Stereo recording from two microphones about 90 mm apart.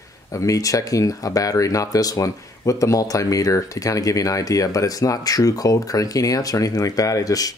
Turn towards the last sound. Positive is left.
turn(degrees=45)  # may be behind; listen again after turning